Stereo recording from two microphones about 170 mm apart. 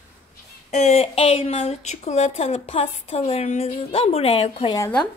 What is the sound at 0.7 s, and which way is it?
Speech, 40° left (ahead or behind).